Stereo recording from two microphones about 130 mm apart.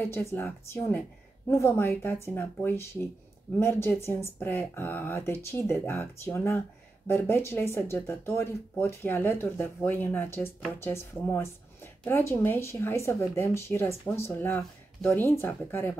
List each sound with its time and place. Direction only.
0.1 s speech: 20° left (ahead or behind)